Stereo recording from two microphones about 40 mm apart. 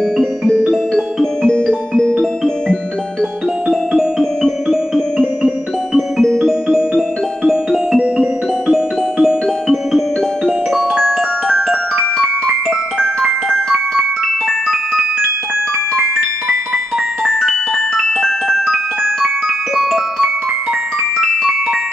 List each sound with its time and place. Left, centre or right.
0.2 s music: centre
3.6 s music: centre
8.2 s music: centre
10.7 s glockenspiel: centre
11.5 s glockenspiel: centre
13.0 s glockenspiel: centre
17.4 s marimba: centre
18.0 s glockenspiel: centre
19.7 s marimba: centre